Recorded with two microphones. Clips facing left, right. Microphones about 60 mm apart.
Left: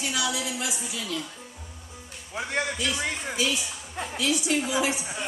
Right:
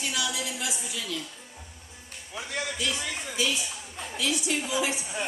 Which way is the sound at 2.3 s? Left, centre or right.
Left.